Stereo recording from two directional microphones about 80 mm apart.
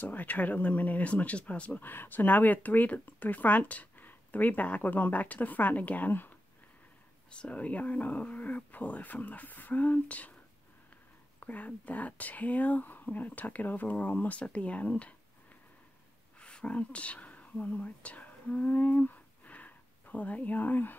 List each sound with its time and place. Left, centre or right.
0.0 s speech: left
11.3 s speech: centre
16.3 s speech: centre